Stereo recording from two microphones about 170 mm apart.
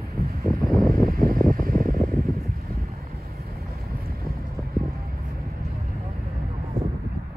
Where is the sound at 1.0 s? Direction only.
60° right (ahead or behind).